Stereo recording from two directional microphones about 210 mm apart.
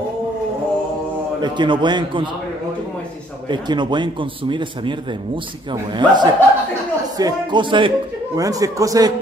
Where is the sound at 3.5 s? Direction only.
20° right (ahead or behind).